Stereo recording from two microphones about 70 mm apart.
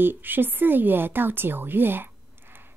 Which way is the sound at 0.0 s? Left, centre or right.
Right.